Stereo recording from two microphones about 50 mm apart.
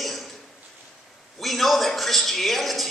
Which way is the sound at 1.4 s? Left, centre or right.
Centre.